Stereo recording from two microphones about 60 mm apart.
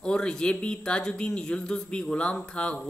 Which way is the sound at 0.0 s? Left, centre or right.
Centre.